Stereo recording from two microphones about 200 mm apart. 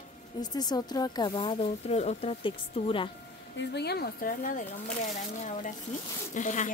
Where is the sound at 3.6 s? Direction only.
55° left (ahead or behind).